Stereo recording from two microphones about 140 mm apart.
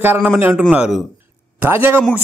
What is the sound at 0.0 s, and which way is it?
Speech, 15° right (ahead or behind).